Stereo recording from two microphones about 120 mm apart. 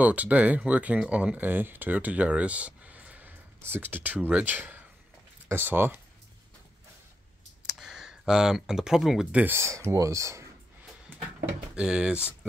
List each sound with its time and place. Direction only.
0.0 s speech: 10° right (ahead or behind)
7.7 s speech: 5° right (ahead or behind); by 10.5 s 25° right (ahead or behind)
11.7 s speech: 10° right (ahead or behind)